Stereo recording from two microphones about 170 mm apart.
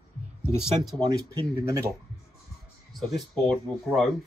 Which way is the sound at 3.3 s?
Centre (ahead or behind).